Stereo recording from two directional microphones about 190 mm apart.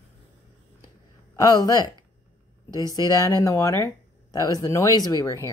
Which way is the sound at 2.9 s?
20° left (ahead or behind).